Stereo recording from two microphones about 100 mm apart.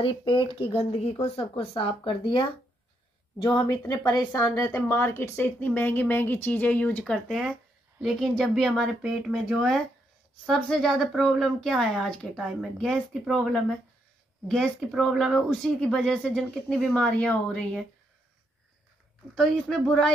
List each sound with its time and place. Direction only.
0.0 s speech: 55° left (ahead or behind); by 1.5 s 80° left
1.6 s speech: 65° left (ahead or behind)
3.4 s speech: 40° left (ahead or behind)
4.3 s a woman's voice: 35° left (ahead or behind); by 17.8 s 10° left (ahead or behind)
19.3 s speech: 5° left (ahead or behind)